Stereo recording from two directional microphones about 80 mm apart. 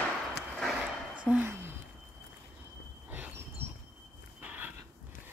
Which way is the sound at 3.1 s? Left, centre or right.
Right.